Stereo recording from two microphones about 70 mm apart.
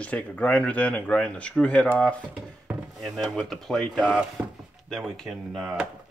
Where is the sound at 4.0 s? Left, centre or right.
Centre.